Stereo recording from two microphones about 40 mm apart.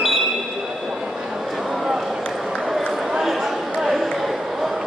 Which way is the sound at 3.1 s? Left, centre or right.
Centre.